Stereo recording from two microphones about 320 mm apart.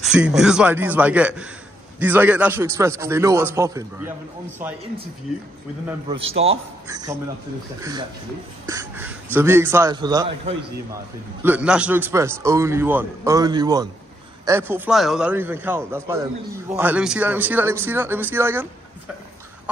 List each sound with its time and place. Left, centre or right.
0.0 s a man's voice: centre
6.0 s a man's voice: centre
11.4 s a man's voice: centre